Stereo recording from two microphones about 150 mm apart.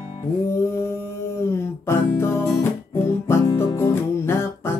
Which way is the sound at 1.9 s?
15° left (ahead or behind).